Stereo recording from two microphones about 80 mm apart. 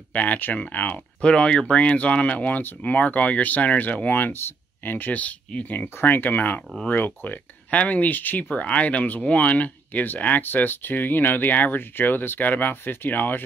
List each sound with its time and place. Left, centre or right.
0.1 s speech: centre